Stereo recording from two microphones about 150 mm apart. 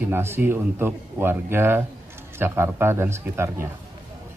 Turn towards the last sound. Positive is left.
turn(degrees=-15)  # may be behind; listen again after turning